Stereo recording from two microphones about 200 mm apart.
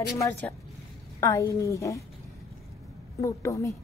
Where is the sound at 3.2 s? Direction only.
15° left (ahead or behind).